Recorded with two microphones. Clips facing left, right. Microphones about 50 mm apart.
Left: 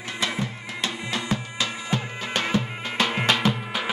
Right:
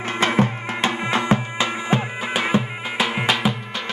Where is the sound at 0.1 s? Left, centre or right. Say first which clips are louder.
Right 9 dB; right.